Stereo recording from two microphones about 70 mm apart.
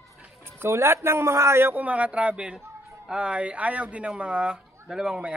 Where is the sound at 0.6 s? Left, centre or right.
Right.